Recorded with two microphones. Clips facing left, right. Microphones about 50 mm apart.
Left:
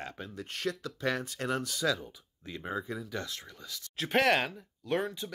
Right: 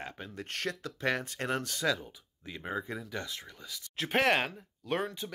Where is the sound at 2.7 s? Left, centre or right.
Right.